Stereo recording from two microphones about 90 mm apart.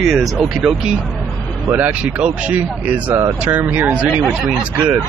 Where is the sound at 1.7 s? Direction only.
15° right (ahead or behind).